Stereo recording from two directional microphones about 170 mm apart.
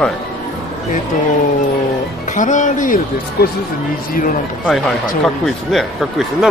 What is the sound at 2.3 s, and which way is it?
Speech, 45° left (ahead or behind).